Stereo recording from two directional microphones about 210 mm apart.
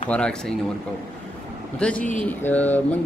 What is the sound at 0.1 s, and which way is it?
Speech, 5° left (ahead or behind).